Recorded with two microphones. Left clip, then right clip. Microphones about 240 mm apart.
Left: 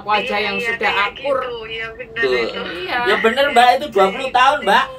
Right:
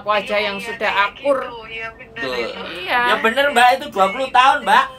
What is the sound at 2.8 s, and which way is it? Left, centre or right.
Speech, centre.